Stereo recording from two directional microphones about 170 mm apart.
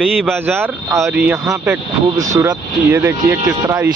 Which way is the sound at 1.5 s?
20° right (ahead or behind).